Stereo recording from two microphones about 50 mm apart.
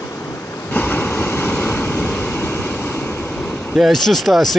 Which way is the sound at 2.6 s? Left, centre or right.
Left.